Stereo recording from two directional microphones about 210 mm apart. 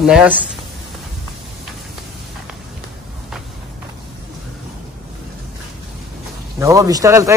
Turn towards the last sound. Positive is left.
turn(degrees=-15)  # may be behind; listen again after turning